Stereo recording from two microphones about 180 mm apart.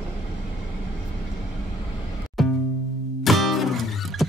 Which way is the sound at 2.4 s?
Centre (ahead or behind).